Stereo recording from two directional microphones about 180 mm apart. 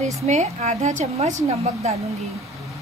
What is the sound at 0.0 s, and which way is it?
Speech, 40° right (ahead or behind).